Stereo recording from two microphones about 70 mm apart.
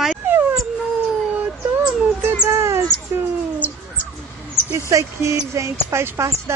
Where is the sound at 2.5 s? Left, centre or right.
Right.